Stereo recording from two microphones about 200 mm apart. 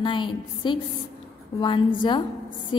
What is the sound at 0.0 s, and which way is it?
Speech, 25° left (ahead or behind).